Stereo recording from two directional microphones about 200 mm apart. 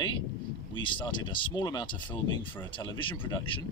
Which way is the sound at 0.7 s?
25° left (ahead or behind).